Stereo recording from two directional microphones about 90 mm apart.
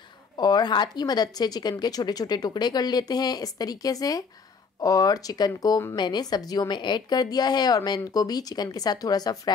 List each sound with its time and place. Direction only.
0.4 s speech: 50° left (ahead or behind)